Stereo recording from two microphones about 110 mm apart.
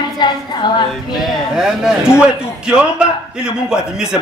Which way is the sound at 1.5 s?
5° right (ahead or behind).